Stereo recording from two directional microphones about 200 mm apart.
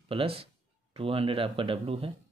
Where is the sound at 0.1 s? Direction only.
30° right (ahead or behind).